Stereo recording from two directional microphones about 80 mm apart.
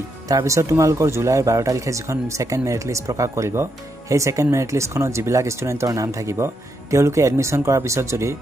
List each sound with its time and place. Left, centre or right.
0.3 s speech: right